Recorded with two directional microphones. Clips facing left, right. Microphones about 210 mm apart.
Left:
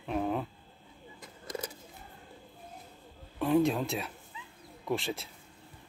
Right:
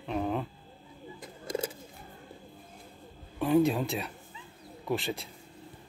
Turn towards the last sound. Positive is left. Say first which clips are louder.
# right 1 dB
turn(degrees=0)  # may be behind; listen again after turning